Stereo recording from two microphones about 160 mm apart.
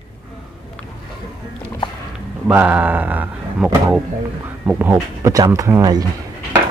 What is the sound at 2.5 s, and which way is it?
Mantra, 10° right (ahead or behind).